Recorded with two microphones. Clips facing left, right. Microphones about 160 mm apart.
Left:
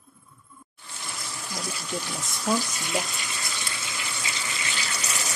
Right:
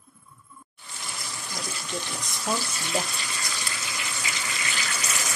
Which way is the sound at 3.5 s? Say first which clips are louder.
Even; 25° left (ahead or behind).